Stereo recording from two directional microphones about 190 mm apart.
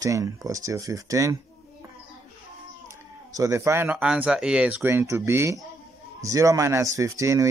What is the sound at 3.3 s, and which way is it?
Speech, 15° right (ahead or behind).